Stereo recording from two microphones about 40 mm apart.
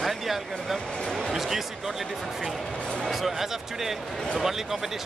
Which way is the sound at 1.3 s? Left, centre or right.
Centre.